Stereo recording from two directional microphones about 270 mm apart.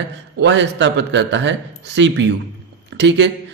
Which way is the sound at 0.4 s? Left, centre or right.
Right.